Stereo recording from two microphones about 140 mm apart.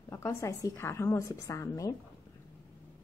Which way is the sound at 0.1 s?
20° left (ahead or behind).